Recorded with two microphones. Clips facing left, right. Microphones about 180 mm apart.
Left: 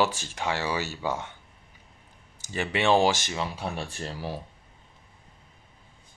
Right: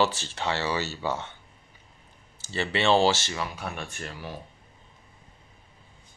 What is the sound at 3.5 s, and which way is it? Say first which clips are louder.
Speech: left 2 dB; 30° left (ahead or behind).